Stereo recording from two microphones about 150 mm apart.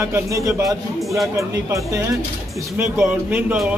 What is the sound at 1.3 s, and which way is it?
Speech, 20° right (ahead or behind).